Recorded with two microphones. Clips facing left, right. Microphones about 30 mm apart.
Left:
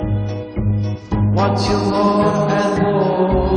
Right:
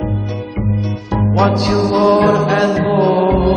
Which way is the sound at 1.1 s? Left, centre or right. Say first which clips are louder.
Right 3 dB; centre.